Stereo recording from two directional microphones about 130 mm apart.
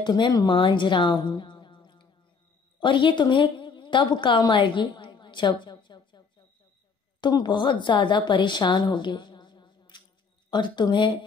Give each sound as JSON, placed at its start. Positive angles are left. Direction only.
{"t": 0.0, "sound": "a woman's voice", "side_deg": 35}